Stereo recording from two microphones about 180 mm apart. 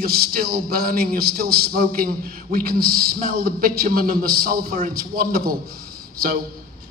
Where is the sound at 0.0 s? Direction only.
55° right (ahead or behind).